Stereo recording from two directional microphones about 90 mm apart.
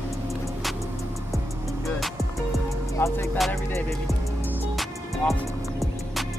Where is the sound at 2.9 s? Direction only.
30° left (ahead or behind).